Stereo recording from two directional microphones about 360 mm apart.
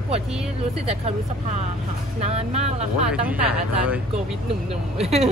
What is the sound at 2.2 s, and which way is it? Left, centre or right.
Speech, centre.